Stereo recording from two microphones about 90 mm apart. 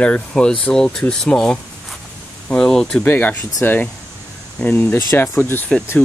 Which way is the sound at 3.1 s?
25° left (ahead or behind).